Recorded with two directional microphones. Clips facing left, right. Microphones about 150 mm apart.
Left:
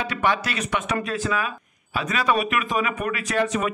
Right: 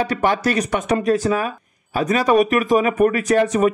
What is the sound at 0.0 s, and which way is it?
A man's voice, 40° right (ahead or behind).